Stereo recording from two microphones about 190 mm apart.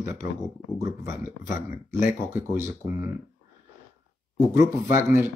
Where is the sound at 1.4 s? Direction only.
45° left (ahead or behind).